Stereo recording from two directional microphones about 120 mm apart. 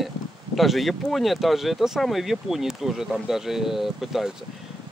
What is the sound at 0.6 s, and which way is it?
Speech, centre (ahead or behind).